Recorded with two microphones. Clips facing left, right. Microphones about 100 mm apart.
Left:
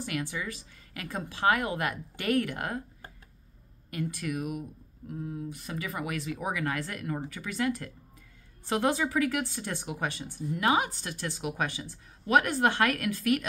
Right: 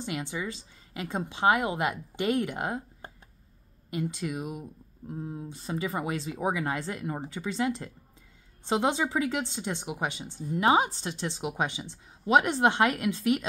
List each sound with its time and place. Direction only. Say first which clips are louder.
0.0 s speech: right 1 dB; 25° right (ahead or behind)